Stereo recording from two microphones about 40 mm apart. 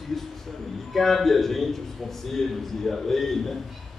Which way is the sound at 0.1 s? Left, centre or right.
Centre.